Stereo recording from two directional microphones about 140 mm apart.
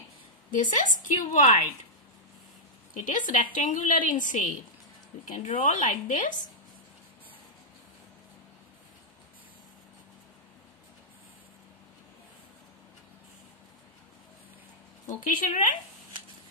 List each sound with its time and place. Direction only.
0.5 s a woman's voice: 70° left (ahead or behind)
2.9 s a woman's voice: 70° left (ahead or behind)
15.0 s a woman's voice: 70° left (ahead or behind)